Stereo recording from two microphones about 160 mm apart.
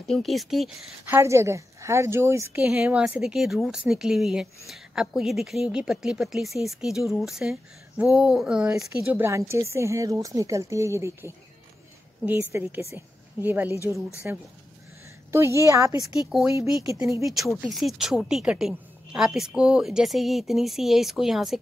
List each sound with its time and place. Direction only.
0.0 s a woman's voice: centre (ahead or behind)
1.0 s a woman's voice: 15° right (ahead or behind)
16.0 s a woman's voice: centre (ahead or behind)
17.7 s a woman's voice: centre (ahead or behind)